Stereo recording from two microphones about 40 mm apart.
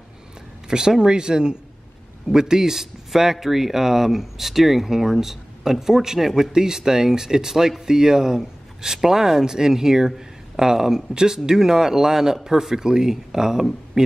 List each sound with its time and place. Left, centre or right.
0.7 s speech: centre